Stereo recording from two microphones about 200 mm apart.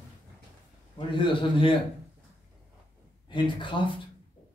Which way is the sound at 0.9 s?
25° left (ahead or behind).